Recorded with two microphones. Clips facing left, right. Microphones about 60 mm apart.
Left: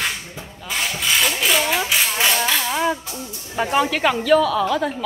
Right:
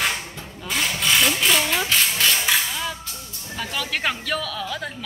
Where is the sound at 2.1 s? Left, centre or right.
Left.